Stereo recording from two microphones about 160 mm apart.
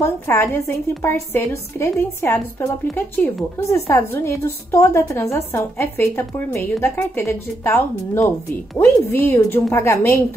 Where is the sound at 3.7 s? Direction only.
15° left (ahead or behind).